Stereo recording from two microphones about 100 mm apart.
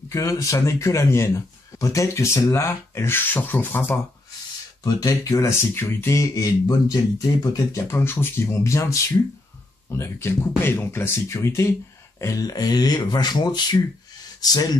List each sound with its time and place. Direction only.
0.1 s speech: 30° left (ahead or behind)
4.8 s speech: 35° left (ahead or behind)
7.9 s speech: 25° left (ahead or behind); by 14.7 s 40° left (ahead or behind)